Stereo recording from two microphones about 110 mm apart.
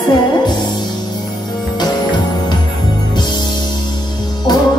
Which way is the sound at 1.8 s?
40° left (ahead or behind).